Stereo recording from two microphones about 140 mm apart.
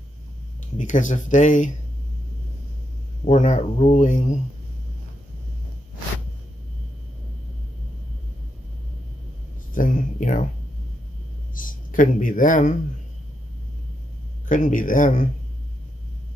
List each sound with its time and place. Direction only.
0.7 s speech: 65° left (ahead or behind)
3.3 s speech: 60° left (ahead or behind)
9.8 s speech: 65° left (ahead or behind)
11.5 s speech: 70° left (ahead or behind)
14.5 s speech: 70° left (ahead or behind)